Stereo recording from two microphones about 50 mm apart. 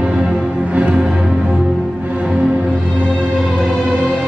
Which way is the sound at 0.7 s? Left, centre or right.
Right.